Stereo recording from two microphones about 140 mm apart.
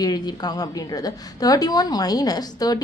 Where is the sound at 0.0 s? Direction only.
30° left (ahead or behind).